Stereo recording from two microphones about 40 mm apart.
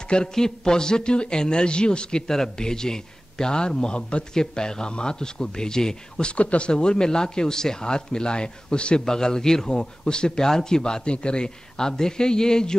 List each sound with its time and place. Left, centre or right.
0.1 s speech: centre
6.3 s a man's voice: left; by 12.7 s centre